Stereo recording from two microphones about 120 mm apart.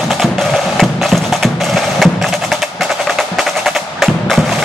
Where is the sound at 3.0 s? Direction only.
Centre (ahead or behind).